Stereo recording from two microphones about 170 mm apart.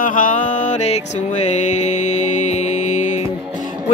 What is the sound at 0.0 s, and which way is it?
Music, 50° left (ahead or behind).